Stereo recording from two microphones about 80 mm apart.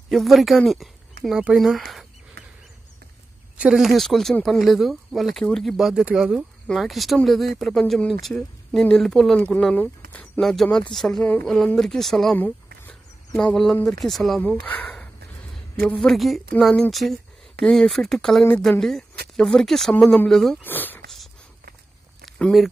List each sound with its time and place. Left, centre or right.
0.1 s speech: centre
3.5 s speech: centre
3.8 s speech: centre
9.8 s a sound: left
10.4 s speech: centre
14.6 s speech: left
16.0 s speech: centre
20.6 s speech: left